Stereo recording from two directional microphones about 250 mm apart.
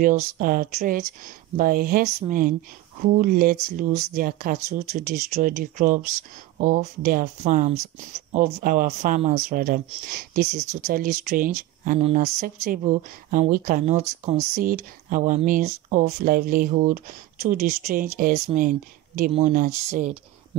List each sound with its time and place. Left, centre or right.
0.0 s speech: right